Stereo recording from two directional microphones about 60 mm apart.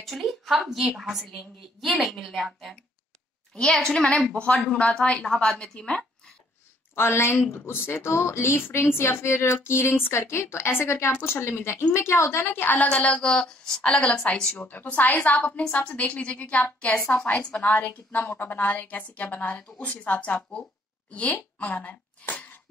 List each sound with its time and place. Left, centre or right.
0.0 s a woman's voice: centre
7.0 s a woman's voice: left
12.7 s a woman's voice: left
13.3 s a woman's voice: centre
14.5 s a woman's voice: left
18.2 s a woman's voice: left
18.5 s a woman's voice: left